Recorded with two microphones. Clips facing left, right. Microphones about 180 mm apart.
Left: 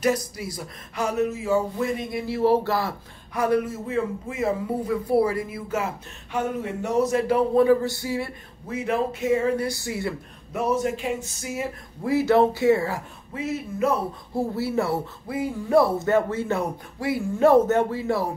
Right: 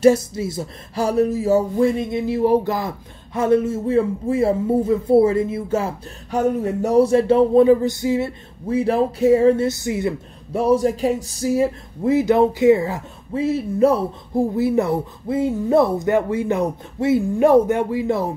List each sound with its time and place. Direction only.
0.0 s speech: 25° right (ahead or behind)
2.0 s speech: 25° right (ahead or behind)
10.5 s speech: 30° right (ahead or behind)
13.3 s speech: 30° right (ahead or behind)
14.3 s speech: 15° right (ahead or behind)